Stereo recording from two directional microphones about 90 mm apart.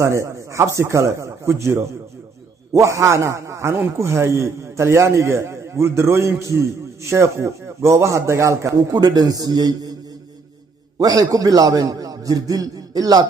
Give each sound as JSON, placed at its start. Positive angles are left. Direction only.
{"t": 0.0, "sound": "a man's voice", "side_deg": -30}
{"t": 8.9, "sound": "a man's voice", "side_deg": -45}
{"t": 11.0, "sound": "a man's voice", "side_deg": -40}